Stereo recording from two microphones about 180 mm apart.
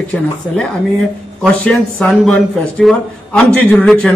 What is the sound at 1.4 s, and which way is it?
A man's voice, 5° left (ahead or behind).